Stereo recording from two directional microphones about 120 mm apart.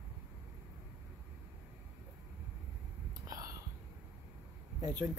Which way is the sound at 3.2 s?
30° right (ahead or behind).